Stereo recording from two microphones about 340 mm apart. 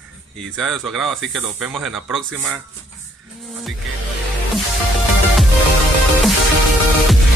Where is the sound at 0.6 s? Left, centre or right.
Centre.